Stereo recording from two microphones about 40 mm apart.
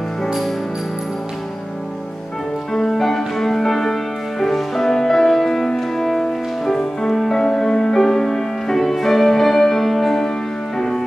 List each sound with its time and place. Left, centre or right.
2.7 s music: centre